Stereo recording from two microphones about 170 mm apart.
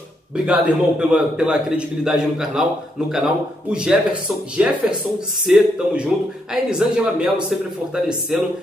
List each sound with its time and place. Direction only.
0.5 s speech: 5° right (ahead or behind)
3.7 s speech: 5° right (ahead or behind)